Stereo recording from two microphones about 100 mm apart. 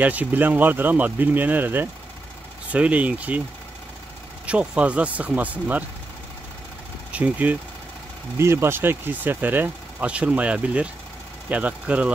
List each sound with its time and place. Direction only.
0.0 s speech: 15° right (ahead or behind)
4.5 s speech: 10° right (ahead or behind)
7.1 s speech: 15° right (ahead or behind)
8.4 s speech: 25° right (ahead or behind)